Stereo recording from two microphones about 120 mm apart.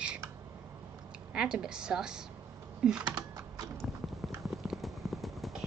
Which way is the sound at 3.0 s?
35° right (ahead or behind).